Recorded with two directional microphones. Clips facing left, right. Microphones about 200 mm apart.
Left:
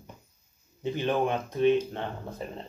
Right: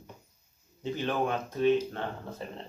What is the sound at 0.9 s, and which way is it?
Speech, 20° left (ahead or behind).